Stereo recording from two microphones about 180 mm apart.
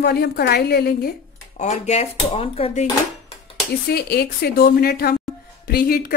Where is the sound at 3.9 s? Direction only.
60° left (ahead or behind).